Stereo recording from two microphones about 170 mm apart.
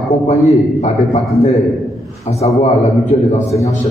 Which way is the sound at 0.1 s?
40° left (ahead or behind).